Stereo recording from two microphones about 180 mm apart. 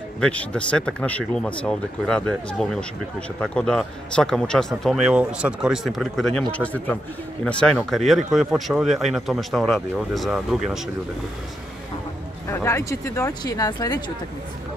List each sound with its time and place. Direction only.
0.2 s a man's voice: 5° left (ahead or behind)
12.4 s speech: 15° left (ahead or behind)